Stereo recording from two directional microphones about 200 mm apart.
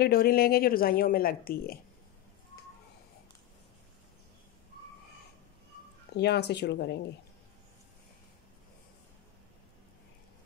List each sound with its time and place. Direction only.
0.0 s speech: 50° left (ahead or behind)
6.1 s speech: 55° left (ahead or behind)